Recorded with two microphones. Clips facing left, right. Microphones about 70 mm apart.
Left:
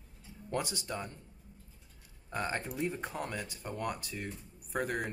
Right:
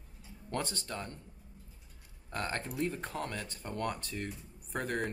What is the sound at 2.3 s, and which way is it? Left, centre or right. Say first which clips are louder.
Speech: left 1 dB; centre.